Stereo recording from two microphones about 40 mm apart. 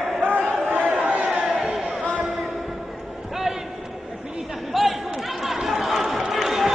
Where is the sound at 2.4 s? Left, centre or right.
Centre.